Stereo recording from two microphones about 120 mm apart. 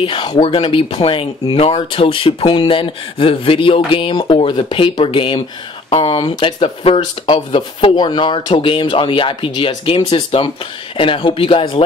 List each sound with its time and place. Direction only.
0.0 s speech: 40° left (ahead or behind)